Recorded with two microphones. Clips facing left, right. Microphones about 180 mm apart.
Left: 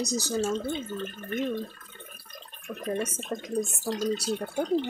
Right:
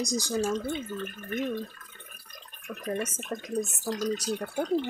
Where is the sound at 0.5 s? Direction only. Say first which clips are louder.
Left 1 dB; 30° left (ahead or behind).